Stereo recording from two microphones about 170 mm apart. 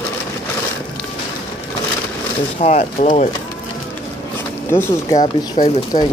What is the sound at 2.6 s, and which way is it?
Speech, 40° left (ahead or behind).